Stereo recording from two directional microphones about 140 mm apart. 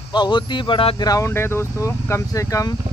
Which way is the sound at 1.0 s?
20° left (ahead or behind).